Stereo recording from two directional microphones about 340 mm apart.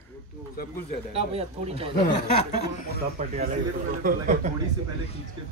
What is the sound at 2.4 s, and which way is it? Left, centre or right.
Speech, left.